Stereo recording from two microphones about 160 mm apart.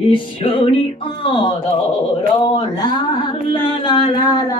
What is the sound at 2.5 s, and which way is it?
Singing, 25° left (ahead or behind).